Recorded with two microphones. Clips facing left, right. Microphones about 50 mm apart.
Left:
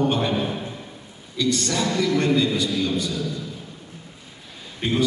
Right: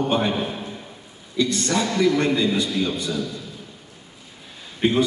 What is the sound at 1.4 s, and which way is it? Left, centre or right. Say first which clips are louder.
A man's voice: right 1 dB; right.